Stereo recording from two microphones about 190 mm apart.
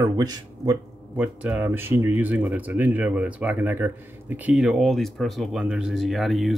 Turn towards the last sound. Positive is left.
turn(degrees=0)  # may be behind; listen again after turning